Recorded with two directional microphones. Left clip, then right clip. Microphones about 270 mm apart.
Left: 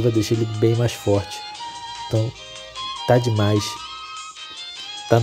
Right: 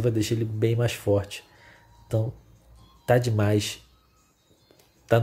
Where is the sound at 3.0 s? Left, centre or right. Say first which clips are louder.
Left 4 dB; centre.